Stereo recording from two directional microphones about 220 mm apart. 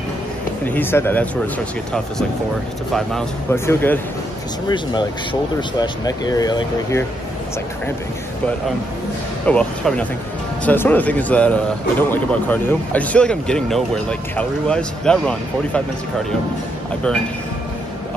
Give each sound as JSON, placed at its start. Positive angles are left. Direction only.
{"t": 0.7, "sound": "a man's voice", "side_deg": 10}
{"t": 2.9, "sound": "a man's voice", "side_deg": 0}
{"t": 4.6, "sound": "speech", "side_deg": 20}
{"t": 9.5, "sound": "a man's voice", "side_deg": 5}